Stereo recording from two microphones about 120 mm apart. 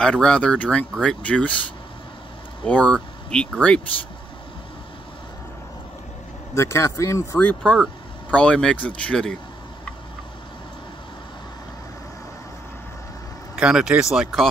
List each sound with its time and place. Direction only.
0.0 s speech: 5° left (ahead or behind)
2.6 s speech: 10° left (ahead or behind)
6.5 s speech: 25° left (ahead or behind)
7.3 s speech: 10° left (ahead or behind)
13.6 s speech: 5° right (ahead or behind)